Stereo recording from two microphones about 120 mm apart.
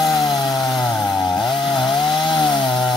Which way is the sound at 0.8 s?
5° left (ahead or behind).